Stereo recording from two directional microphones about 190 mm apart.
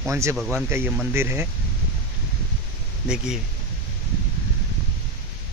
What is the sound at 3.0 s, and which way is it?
Speech, 5° right (ahead or behind).